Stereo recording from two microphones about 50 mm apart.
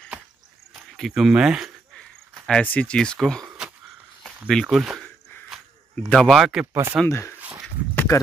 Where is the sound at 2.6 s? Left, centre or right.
Left.